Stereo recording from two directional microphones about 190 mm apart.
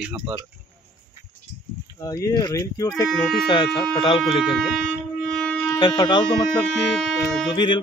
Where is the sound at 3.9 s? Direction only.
25° left (ahead or behind).